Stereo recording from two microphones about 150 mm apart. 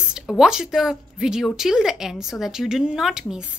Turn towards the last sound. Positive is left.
turn(degrees=-5)  # may be behind; listen again after turning